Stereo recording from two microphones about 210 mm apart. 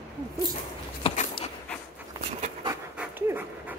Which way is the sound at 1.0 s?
30° left (ahead or behind).